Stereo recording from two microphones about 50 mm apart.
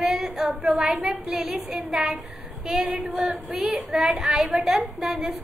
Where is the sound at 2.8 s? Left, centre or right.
Right.